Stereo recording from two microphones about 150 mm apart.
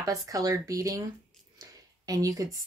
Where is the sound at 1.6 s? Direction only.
25° right (ahead or behind).